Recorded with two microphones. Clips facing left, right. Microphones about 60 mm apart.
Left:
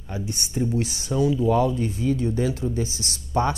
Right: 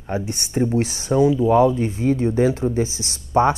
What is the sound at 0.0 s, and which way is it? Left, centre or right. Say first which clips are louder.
Speech: right 6 dB; right.